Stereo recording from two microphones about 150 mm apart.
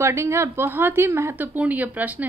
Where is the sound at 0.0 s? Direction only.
20° right (ahead or behind).